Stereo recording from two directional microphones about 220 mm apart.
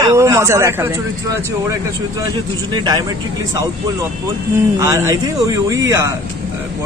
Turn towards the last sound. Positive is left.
turn(degrees=-15)  # may be behind; listen again after turning